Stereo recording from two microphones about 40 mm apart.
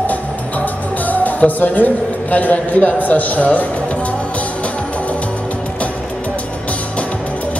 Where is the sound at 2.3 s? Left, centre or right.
Left.